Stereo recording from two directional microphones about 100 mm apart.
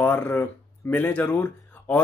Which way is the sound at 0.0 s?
20° left (ahead or behind).